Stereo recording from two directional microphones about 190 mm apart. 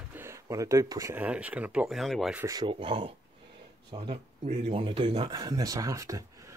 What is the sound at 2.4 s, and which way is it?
Speech, 25° right (ahead or behind).